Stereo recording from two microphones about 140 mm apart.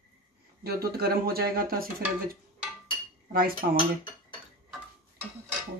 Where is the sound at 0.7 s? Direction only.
90° right.